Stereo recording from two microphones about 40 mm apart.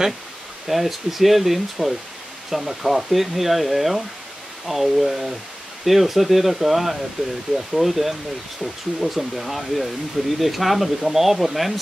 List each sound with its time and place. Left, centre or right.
0.7 s speech: centre
7.2 s speech: right
7.5 s speech: centre